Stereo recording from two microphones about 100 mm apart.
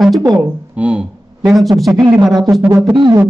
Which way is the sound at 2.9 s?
50° right (ahead or behind).